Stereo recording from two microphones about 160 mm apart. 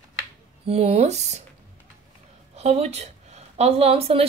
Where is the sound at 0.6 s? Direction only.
40° right (ahead or behind).